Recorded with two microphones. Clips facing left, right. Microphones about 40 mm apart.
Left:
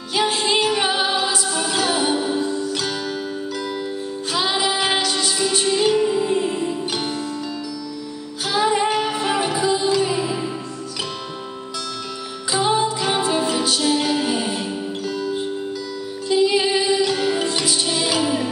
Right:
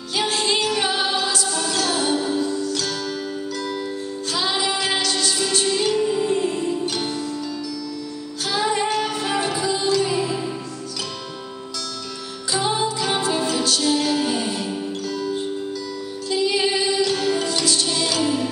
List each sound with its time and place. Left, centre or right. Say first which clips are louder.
0.1 s music: left 2 dB; centre
4.3 s music: left 2 dB; centre
8.5 s music: left 3 dB; centre
12.5 s music: left 3 dB; centre